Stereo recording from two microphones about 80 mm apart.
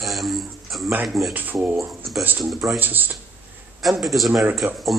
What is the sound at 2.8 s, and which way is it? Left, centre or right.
Speech, right.